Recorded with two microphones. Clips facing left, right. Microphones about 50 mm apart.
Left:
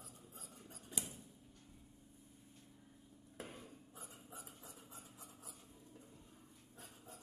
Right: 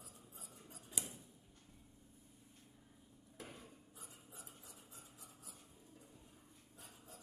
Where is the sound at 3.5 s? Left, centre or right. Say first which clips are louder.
Left 2 dB; left.